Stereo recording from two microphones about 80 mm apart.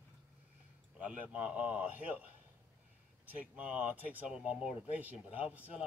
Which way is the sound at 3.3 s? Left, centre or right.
Centre.